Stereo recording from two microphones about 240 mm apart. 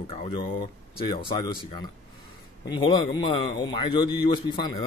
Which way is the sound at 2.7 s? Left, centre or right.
Centre.